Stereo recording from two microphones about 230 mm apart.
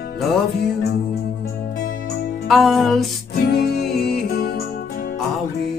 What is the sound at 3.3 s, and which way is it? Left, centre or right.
Music, left.